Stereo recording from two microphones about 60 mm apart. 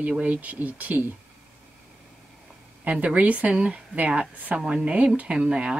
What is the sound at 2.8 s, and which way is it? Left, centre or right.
Speech, right.